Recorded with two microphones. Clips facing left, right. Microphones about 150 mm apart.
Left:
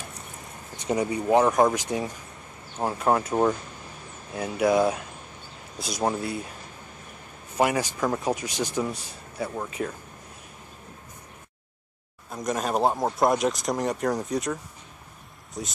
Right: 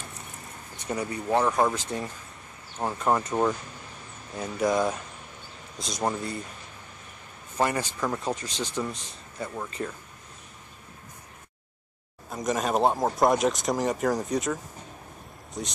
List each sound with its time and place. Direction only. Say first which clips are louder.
0.8 s speech: left 5 dB; 20° left (ahead or behind)
7.5 s speech: left 3 dB; 10° left (ahead or behind)
12.3 s speech: right 1 dB; centre (ahead or behind)